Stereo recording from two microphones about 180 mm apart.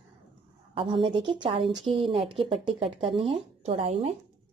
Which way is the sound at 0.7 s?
30° right (ahead or behind).